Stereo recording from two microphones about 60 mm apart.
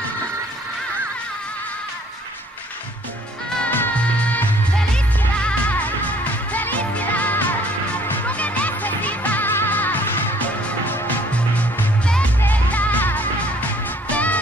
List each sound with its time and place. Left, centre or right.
4.0 s music: left
4.7 s music: centre
5.7 s music: left
12.4 s music: left